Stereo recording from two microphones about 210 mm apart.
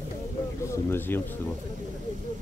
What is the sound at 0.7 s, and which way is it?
Speech, 10° left (ahead or behind).